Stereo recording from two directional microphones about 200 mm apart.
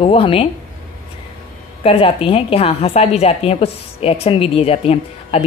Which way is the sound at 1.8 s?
30° left (ahead or behind).